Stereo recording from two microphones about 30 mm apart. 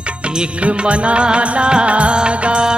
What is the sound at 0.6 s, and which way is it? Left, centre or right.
Music, right.